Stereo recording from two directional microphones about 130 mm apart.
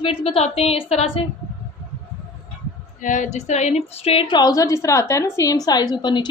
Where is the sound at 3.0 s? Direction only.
80° left.